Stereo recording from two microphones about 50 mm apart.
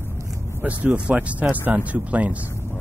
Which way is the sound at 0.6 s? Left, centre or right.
Right.